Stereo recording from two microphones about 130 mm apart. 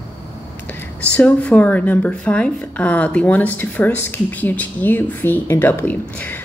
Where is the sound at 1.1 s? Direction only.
10° left (ahead or behind).